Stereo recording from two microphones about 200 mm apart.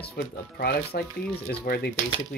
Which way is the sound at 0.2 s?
50° left (ahead or behind).